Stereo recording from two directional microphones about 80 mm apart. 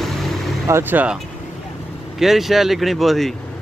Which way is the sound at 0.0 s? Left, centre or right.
Centre.